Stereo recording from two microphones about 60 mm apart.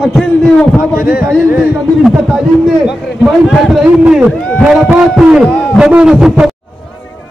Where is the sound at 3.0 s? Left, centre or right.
Centre.